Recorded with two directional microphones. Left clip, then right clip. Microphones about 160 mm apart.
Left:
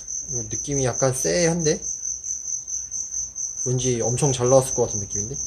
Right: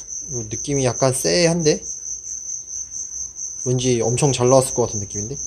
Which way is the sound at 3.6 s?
30° right (ahead or behind).